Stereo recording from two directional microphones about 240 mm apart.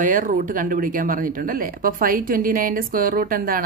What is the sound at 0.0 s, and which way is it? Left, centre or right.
A woman's voice, right.